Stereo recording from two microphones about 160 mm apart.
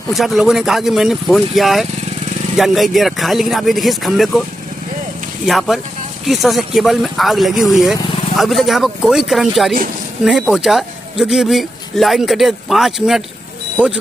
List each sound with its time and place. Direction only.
0.1 s speech: centre (ahead or behind)
5.4 s speech: centre (ahead or behind)